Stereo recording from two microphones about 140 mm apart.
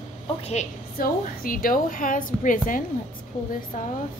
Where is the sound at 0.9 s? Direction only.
90° left.